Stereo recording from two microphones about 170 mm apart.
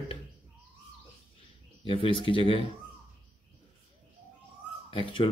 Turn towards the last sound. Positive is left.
turn(degrees=30)  # may be behind; listen again after turning